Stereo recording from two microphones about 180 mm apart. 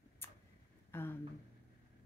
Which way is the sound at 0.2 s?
15° left (ahead or behind).